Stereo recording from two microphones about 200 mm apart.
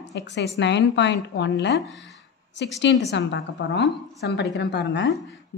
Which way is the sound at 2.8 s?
60° left (ahead or behind).